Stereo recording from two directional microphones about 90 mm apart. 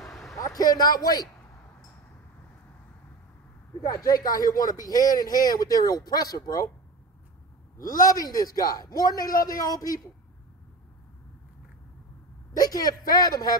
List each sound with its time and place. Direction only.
0.0 s vehicle: centre (ahead or behind)
0.4 s a man's voice: 45° left (ahead or behind)
3.9 s speech: 45° left (ahead or behind)
7.7 s speech: 45° left (ahead or behind)
12.5 s speech: 45° left (ahead or behind)